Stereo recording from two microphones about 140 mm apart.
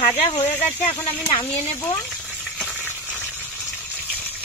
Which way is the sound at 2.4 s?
10° left (ahead or behind).